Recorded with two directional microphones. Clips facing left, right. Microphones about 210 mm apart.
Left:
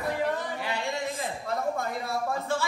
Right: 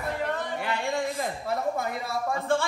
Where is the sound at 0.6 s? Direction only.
55° right (ahead or behind).